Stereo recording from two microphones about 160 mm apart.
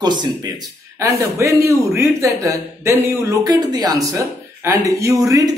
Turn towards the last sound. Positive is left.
turn(degrees=-20)  # may be behind; listen again after turning